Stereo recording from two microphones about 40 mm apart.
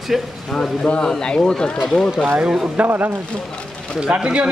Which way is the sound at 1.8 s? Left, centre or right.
Centre.